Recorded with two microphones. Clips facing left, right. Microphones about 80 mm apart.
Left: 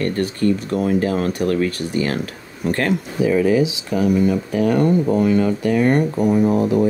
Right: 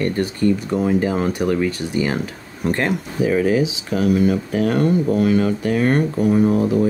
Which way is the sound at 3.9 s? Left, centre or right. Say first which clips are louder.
Even; centre.